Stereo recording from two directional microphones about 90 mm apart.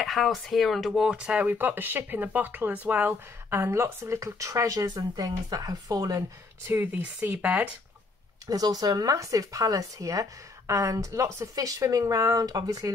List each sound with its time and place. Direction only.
0.0 s speech: centre (ahead or behind); by 6.2 s 40° right (ahead or behind)
6.7 s speech: 20° right (ahead or behind)
8.5 s speech: 45° right (ahead or behind)
12.4 s speech: 45° right (ahead or behind)